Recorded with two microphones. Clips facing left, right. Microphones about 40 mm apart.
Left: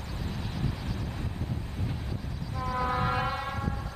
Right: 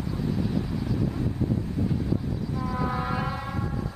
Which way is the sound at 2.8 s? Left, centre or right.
Centre.